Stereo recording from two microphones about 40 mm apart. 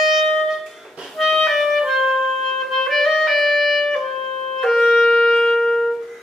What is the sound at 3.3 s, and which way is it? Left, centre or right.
Music, centre.